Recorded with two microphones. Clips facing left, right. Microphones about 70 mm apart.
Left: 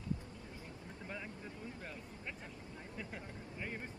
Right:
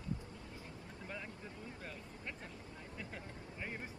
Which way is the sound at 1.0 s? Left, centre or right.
Centre.